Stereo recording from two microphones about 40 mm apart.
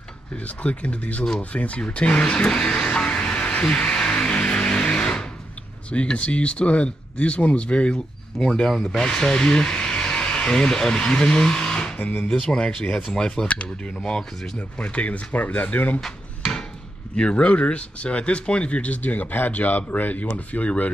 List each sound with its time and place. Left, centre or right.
0.4 s speech: left
3.9 s a sound: left
6.1 s speech: left
12.0 s speech: left
12.3 s speech: left
15.3 s speech: left
17.1 s speech: left
19.3 s speech: left